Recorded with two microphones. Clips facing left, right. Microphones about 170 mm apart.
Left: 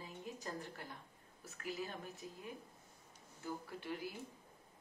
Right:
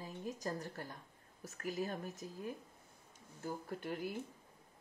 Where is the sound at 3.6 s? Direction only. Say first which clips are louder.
Right 3 dB; 45° right (ahead or behind).